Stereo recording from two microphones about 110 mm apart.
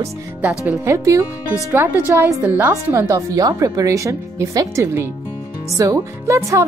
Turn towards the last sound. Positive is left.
turn(degrees=-30)  # may be behind; listen again after turning